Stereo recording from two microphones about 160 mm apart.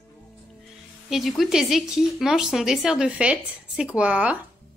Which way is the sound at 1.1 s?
Centre (ahead or behind).